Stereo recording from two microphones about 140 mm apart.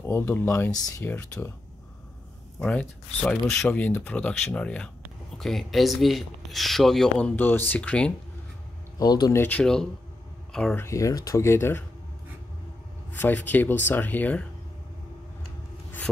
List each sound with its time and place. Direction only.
0.0 s speech: 15° left (ahead or behind)
2.6 s speech: 10° left (ahead or behind)
8.9 s speech: 30° left (ahead or behind)
9.4 s speech: 10° left (ahead or behind)
10.8 s speech: 20° left (ahead or behind)
13.1 s speech: 15° left (ahead or behind)